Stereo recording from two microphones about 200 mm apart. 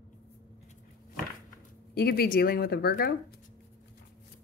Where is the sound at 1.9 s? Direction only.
50° left (ahead or behind).